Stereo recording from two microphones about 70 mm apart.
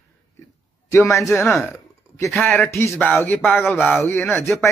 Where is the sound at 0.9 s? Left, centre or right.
Left.